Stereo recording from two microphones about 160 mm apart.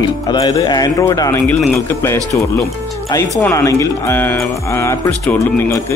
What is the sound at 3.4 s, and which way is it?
Speech, 20° left (ahead or behind).